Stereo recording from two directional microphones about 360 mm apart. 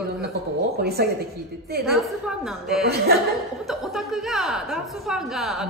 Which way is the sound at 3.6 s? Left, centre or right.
Centre.